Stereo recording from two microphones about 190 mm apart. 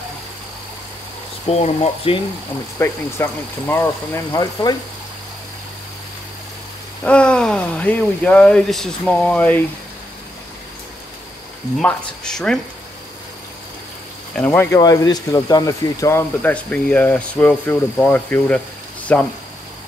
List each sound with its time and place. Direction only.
1.5 s speech: 35° left (ahead or behind)
2.8 s speech: 10° left (ahead or behind)
7.1 s speech: 5° left (ahead or behind)
11.8 s speech: 5° left (ahead or behind)
14.3 s speech: 10° left (ahead or behind)